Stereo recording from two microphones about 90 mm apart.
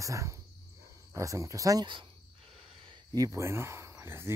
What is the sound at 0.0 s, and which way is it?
Speech, 35° right (ahead or behind).